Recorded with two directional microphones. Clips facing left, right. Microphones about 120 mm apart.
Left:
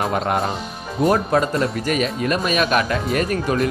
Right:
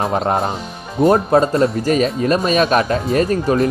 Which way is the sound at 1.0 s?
25° right (ahead or behind).